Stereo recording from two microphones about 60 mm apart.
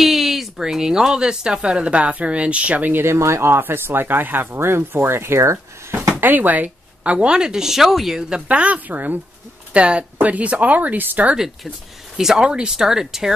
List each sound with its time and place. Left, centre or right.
0.0 s speech: centre; by 3.0 s right
3.0 s speech: right
6.2 s speech: right; by 8.4 s centre
8.5 s speech: right
11.3 s speech: centre